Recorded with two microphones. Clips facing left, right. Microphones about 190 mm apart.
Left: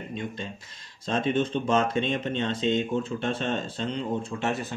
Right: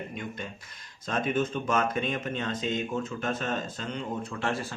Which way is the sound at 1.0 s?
25° left (ahead or behind).